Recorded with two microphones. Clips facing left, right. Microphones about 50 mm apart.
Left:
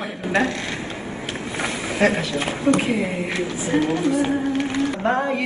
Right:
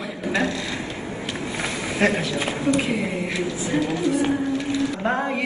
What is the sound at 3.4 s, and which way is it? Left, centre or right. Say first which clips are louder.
Speech: left 3 dB; left.